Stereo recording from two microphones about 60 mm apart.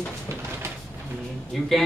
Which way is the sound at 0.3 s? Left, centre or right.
Right.